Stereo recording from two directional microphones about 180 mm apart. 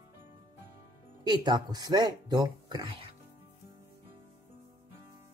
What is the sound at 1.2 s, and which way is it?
Speech, 25° right (ahead or behind).